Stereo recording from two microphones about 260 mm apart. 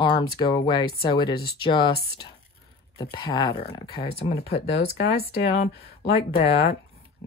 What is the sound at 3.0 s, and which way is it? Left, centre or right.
Speech, centre.